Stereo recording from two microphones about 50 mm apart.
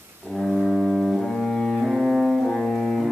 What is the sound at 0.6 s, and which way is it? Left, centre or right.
Music, centre.